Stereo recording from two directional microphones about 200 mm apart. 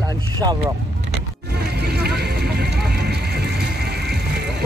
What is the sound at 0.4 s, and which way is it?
Speech, 20° right (ahead or behind).